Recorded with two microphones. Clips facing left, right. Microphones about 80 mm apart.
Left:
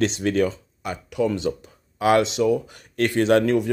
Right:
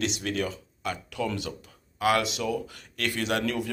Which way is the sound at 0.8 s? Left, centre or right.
Left.